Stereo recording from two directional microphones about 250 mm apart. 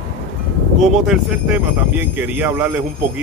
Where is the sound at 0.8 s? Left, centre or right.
Centre.